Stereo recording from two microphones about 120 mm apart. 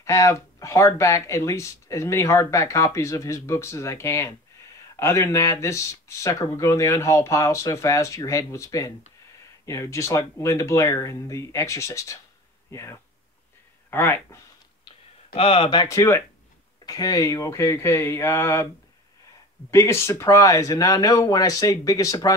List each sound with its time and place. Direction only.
0.0 s speech: 25° left (ahead or behind)
15.3 s speech: 55° left (ahead or behind)
15.8 s speech: 25° left (ahead or behind)
19.7 s speech: 25° left (ahead or behind)